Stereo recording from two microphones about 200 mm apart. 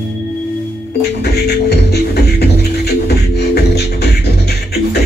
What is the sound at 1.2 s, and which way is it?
Music, 55° left (ahead or behind).